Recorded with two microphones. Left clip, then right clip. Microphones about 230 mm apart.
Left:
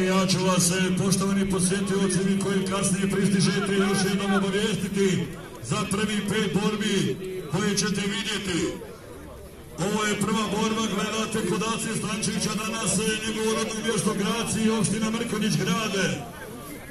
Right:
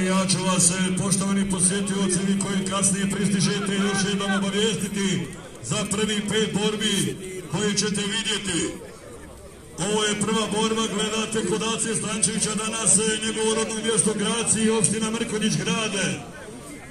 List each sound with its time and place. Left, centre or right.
0.0 s a man's voice: centre
9.8 s a man's voice: centre